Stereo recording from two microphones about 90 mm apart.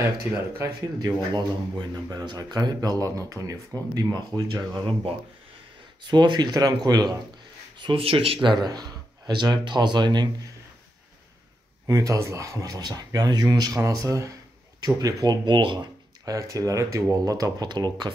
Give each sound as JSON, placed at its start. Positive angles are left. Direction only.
{"t": 0.9, "sound": "speech", "side_deg": -50}
{"t": 4.1, "sound": "speech", "side_deg": -50}
{"t": 6.0, "sound": "speech", "side_deg": -55}
{"t": 7.8, "sound": "speech", "side_deg": -90}
{"t": 11.8, "sound": "speech", "side_deg": -40}
{"t": 15.4, "sound": "speech", "side_deg": -60}
{"t": 16.3, "sound": "speech", "side_deg": -40}